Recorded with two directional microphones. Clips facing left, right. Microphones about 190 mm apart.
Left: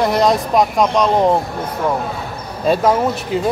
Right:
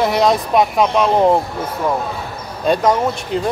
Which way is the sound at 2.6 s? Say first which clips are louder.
Even; 5° left (ahead or behind).